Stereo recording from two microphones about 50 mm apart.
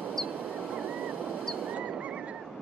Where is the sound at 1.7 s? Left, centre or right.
Right.